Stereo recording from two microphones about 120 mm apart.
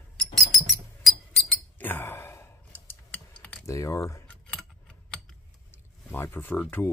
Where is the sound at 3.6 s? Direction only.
25° left (ahead or behind).